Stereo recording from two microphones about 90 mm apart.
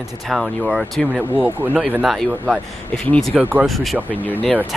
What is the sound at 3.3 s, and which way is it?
Speech, 15° right (ahead or behind).